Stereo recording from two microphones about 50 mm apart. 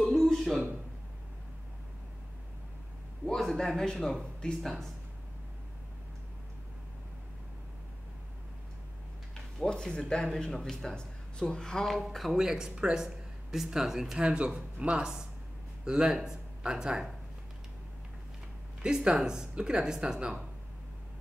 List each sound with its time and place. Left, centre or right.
0.1 s a sound: centre
3.3 s speech: centre
9.9 s speech: centre
11.9 s speech: centre
12.3 s speech: centre
18.8 s speech: centre